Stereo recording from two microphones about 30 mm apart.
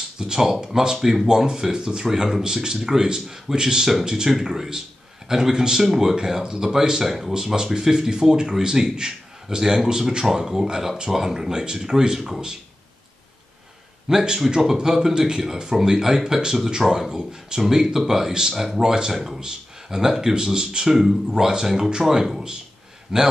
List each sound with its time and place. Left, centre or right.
0.2 s a man's voice: right
14.0 s a man's voice: right
17.6 s a man's voice: centre
19.1 s a man's voice: centre
20.9 s speech: centre
21.3 s a man's voice: right